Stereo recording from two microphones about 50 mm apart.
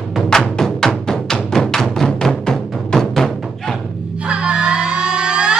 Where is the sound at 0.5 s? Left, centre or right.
Centre.